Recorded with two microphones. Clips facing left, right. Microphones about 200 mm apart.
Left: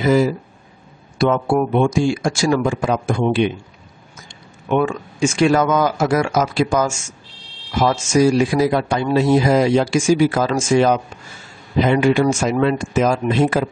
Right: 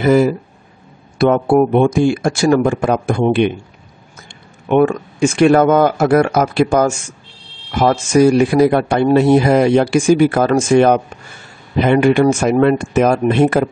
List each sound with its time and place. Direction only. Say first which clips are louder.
0.0 s speech: right 4 dB; 55° right (ahead or behind)
4.6 s speech: right 6 dB; 60° right (ahead or behind)